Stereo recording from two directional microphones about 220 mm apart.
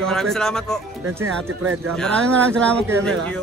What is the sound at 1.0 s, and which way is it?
Speech, 75° right (ahead or behind).